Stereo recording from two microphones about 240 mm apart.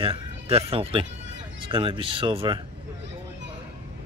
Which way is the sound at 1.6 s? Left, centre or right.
Right.